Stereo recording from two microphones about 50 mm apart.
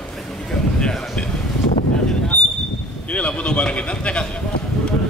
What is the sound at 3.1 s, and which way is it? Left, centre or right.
Speech, left.